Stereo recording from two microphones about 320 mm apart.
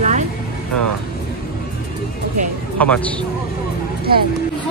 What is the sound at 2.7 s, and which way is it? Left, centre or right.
Speech, centre.